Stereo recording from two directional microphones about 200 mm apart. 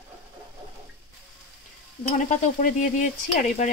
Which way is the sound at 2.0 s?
40° left (ahead or behind).